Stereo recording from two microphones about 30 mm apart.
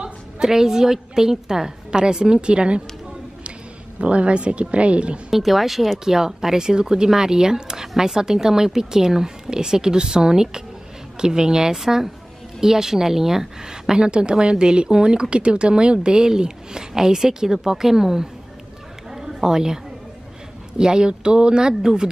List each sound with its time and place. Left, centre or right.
0.4 s speech: centre; by 2.8 s right
4.0 s speech: right
5.3 s speech: centre
6.0 s speech: centre
11.8 s a woman's voice: centre
13.7 s speech: right
19.1 s a sound: centre
20.7 s speech: right